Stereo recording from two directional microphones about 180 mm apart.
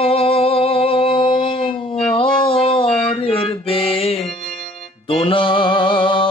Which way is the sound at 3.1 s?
30° left (ahead or behind).